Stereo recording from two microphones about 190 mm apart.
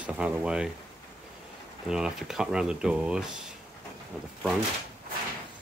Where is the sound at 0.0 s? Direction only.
5° right (ahead or behind).